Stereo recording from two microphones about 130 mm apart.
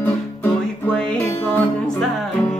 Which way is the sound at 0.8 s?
10° left (ahead or behind).